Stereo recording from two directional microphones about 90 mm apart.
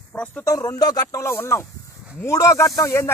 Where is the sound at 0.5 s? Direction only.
40° left (ahead or behind).